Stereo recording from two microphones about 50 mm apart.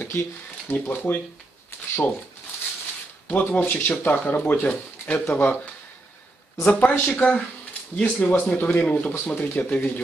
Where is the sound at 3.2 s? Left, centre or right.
Left.